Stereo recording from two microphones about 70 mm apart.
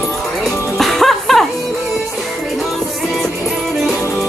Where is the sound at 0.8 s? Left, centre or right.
Centre.